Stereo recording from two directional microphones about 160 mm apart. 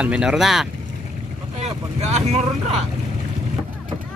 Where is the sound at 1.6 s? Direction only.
40° right (ahead or behind).